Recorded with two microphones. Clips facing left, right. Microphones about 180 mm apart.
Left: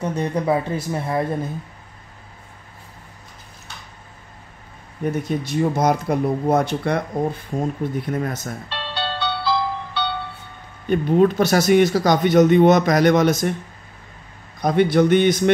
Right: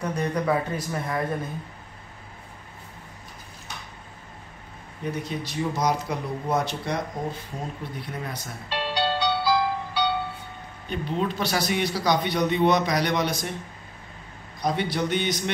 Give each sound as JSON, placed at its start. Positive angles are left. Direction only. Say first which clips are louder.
{"t": 0.0, "sound": "speech", "louder": "left 4 dB", "side_deg": 25}
{"t": 5.1, "sound": "a man's voice", "louder": "left 7 dB", "side_deg": 50}
{"t": 8.6, "sound": "music", "louder": "right 5 dB", "side_deg": -10}
{"t": 10.9, "sound": "a man's voice", "louder": "left 11 dB", "side_deg": 50}
{"t": 14.6, "sound": "a man's voice", "louder": "left 10 dB", "side_deg": 50}